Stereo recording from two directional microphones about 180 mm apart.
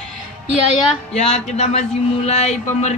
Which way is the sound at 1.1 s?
40° left (ahead or behind).